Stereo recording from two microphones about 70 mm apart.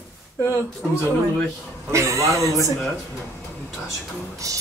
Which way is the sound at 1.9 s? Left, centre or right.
Right.